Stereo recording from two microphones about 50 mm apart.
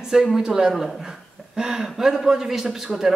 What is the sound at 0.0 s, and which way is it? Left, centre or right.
A man's voice, centre.